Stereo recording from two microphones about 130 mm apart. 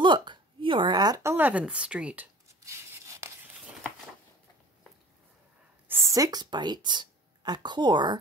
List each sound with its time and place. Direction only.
0.0 s speech: 35° right (ahead or behind); by 2.2 s 10° right (ahead or behind)
2.4 s a sound: 20° right (ahead or behind)
5.9 s speech: 20° right (ahead or behind); by 8.2 s 35° right (ahead or behind)